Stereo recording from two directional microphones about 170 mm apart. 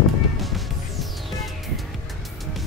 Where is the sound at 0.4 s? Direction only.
Centre (ahead or behind).